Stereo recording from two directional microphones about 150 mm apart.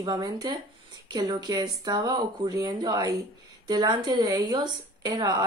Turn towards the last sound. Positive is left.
turn(degrees=-30)  # may be behind; listen again after turning